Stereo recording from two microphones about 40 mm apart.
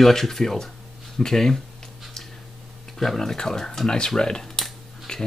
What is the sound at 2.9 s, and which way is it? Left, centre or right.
Speech, centre.